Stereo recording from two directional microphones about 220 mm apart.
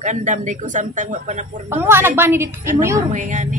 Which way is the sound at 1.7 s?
10° right (ahead or behind).